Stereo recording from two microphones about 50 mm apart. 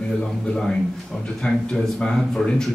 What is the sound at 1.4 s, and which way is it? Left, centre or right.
Speech, centre.